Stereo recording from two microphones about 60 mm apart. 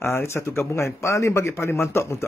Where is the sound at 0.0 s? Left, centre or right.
Left.